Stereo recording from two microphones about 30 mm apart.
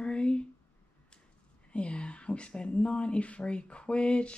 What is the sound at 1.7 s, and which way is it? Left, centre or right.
Speech, left.